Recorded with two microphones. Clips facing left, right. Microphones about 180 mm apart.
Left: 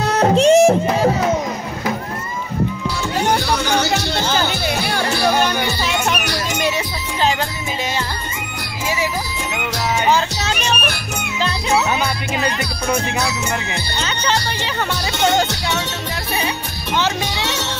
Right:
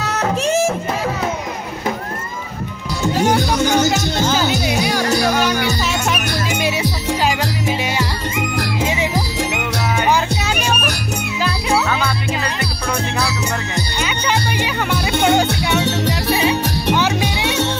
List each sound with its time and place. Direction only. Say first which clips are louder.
0.0 s music: left 6 dB; 30° left (ahead or behind)
3.3 s music: right 3 dB; 45° right (ahead or behind)
4.3 s music: right 1 dB; centre (ahead or behind)
15.2 s speech: right 1 dB; 15° right (ahead or behind)
16.3 s music: right 7 dB; 15° right (ahead or behind)